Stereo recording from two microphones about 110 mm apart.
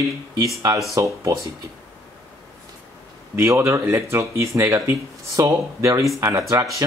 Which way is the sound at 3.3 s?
25° right (ahead or behind).